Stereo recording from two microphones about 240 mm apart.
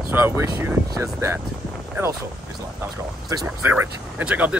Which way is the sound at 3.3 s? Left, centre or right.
Centre.